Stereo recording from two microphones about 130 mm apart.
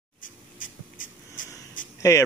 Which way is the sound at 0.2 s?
90° left.